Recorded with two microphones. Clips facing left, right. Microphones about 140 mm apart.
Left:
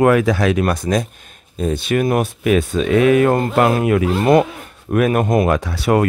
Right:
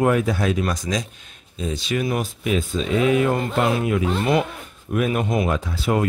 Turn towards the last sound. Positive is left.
turn(degrees=70)  # may be behind; listen again after turning